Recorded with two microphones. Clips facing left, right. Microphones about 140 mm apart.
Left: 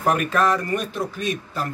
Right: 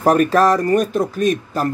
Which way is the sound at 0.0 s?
40° right (ahead or behind).